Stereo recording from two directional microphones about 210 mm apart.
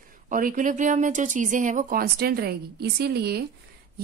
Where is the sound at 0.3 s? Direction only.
40° right (ahead or behind).